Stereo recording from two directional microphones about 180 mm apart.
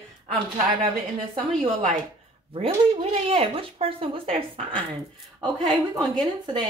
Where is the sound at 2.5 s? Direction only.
30° right (ahead or behind).